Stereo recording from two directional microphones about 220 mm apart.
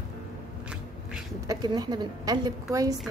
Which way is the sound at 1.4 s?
20° right (ahead or behind).